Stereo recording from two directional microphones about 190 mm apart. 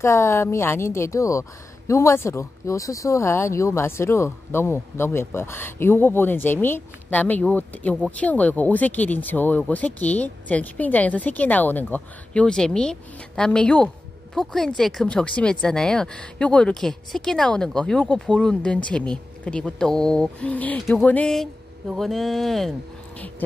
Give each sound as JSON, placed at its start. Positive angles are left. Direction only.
{"t": 0.0, "sound": "a woman's voice", "side_deg": 15}